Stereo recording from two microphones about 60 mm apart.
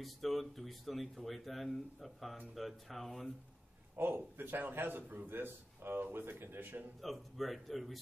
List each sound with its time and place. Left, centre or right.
0.0 s speech: centre
3.9 s a man's voice: right
7.0 s speech: centre